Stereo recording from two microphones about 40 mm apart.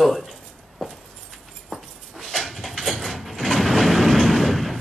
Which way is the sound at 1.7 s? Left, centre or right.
Centre.